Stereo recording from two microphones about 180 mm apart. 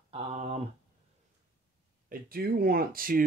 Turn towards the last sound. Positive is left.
turn(degrees=-55)  # may be behind; listen again after turning